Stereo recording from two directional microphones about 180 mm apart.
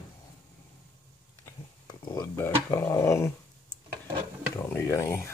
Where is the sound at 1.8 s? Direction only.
20° left (ahead or behind).